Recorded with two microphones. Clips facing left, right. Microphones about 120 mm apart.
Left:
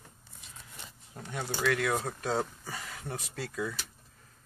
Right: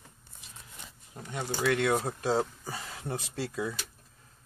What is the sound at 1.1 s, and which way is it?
Speech, 10° right (ahead or behind).